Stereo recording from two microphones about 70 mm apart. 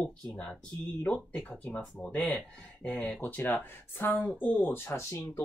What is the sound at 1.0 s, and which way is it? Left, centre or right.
Speech, left.